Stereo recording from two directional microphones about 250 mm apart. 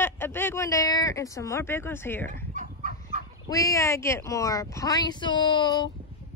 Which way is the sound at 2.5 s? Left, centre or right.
Right.